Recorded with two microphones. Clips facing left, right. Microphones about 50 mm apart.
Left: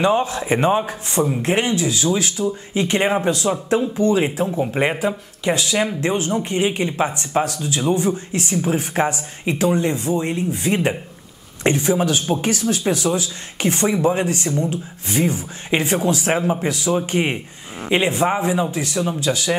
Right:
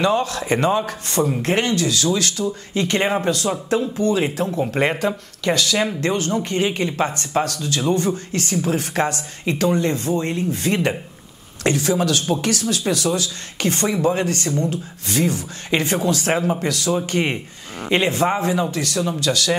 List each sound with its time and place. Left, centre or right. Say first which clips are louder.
0.0 s speech: left 1 dB; left
3.9 s speech: left 4 dB; left
4.2 s speech: left 1 dB; centre
17.8 s a man's voice: even; centre